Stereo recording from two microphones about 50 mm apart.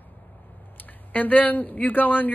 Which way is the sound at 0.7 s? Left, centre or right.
Left.